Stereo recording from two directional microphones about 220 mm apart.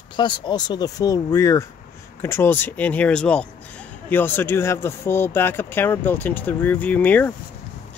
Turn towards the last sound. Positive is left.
turn(degrees=5)  # may be behind; listen again after turning